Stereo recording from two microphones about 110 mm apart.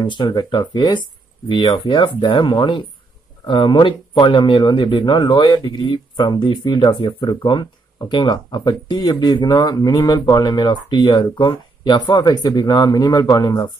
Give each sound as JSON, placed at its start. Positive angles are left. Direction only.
{"t": 0.0, "sound": "speech", "side_deg": 45}